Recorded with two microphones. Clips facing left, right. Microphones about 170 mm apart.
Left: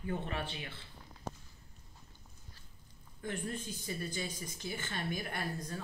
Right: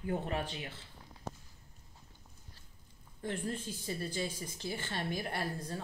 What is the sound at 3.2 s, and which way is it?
Speech, 30° right (ahead or behind).